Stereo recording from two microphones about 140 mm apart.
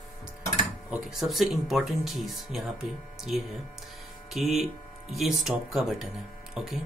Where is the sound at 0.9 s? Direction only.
5° right (ahead or behind).